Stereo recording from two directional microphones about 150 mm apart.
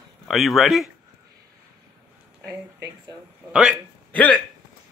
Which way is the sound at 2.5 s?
20° right (ahead or behind).